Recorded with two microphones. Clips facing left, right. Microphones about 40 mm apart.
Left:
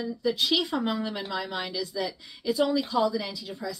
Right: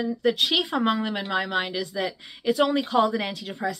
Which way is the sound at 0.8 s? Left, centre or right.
Right.